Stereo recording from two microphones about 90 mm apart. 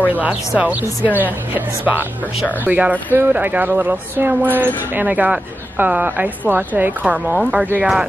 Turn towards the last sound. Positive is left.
turn(degrees=-15)  # may be behind; listen again after turning